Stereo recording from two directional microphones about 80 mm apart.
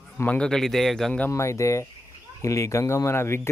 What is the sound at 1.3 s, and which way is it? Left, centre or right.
Speech, left.